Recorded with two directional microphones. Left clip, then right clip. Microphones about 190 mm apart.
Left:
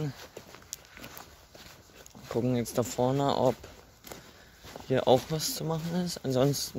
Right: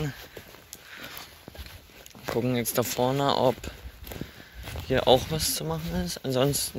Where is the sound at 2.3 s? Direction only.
5° left (ahead or behind).